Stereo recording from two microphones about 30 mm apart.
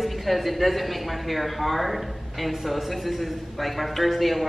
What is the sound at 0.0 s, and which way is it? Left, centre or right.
A woman's voice, centre.